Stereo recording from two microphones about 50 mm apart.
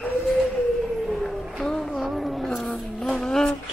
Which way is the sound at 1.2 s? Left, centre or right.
Centre.